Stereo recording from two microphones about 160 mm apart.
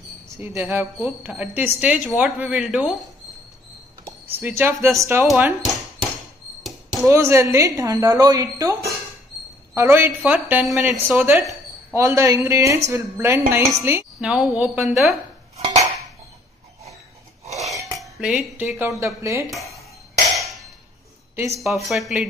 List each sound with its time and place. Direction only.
0.3 s a woman's voice: 15° right (ahead or behind)
4.0 s a woman's voice: 10° right (ahead or behind)
5.3 s a woman's voice: centre (ahead or behind)
6.9 s a woman's voice: 20° right (ahead or behind); by 15.1 s centre (ahead or behind)
15.5 s cutlery: 40° right (ahead or behind)
17.9 s a woman's voice: centre (ahead or behind); by 19.5 s 20° right (ahead or behind)
21.5 s a woman's voice: centre (ahead or behind)